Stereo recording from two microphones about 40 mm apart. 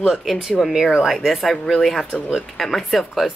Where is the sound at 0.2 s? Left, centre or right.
Centre.